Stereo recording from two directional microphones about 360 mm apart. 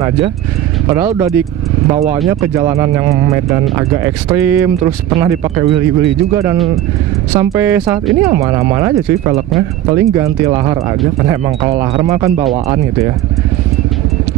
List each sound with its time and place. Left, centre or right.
0.8 s speech: centre
1.9 s speech: centre